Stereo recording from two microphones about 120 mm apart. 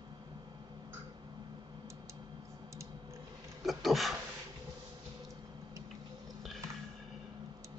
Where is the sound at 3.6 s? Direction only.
Centre (ahead or behind).